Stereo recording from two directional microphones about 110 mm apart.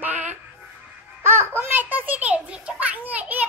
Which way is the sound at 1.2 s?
20° right (ahead or behind).